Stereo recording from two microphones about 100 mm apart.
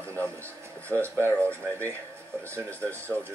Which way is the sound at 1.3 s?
15° left (ahead or behind).